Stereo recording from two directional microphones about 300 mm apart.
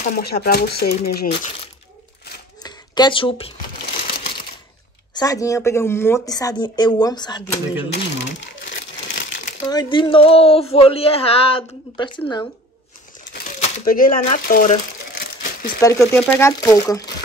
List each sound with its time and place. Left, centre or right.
0.0 s speech: left
1.3 s speech: centre
2.6 s a sound: centre
5.1 s speech: centre
8.6 s crumpling: left
9.7 s speech: centre
13.2 s a sound: left
15.8 s speech: centre